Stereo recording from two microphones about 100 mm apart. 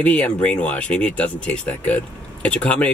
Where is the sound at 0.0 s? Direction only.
10° left (ahead or behind).